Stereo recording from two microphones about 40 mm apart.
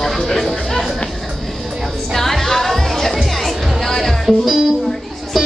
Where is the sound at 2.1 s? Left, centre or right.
Centre.